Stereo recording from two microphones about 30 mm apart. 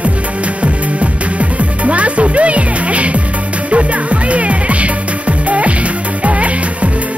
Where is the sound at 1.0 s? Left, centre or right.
Right.